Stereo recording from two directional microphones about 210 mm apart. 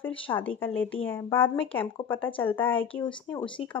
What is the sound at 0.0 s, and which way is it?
A woman's voice, 10° left (ahead or behind).